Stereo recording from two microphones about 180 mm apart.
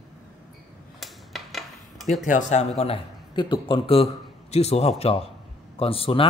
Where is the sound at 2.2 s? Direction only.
40° left (ahead or behind).